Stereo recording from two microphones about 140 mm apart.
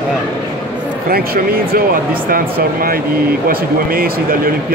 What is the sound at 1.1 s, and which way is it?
Speech, 90° right.